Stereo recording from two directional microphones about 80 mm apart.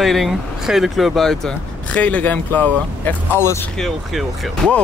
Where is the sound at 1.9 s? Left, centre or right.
Centre.